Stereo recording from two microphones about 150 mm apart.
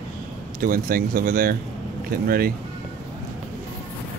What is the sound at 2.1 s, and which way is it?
Speech, 85° right.